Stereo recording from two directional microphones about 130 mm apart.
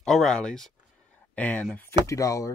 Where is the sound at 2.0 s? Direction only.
25° left (ahead or behind).